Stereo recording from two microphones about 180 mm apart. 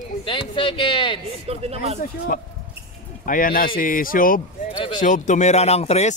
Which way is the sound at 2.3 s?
50° left (ahead or behind).